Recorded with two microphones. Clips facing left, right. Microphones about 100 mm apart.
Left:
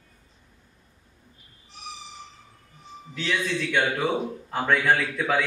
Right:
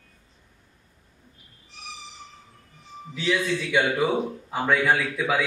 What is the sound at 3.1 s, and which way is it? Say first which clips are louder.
A man's voice: right 3 dB; 5° right (ahead or behind).